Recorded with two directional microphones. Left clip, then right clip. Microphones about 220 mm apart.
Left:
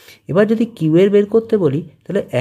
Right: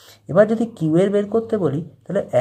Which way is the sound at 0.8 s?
45° left (ahead or behind).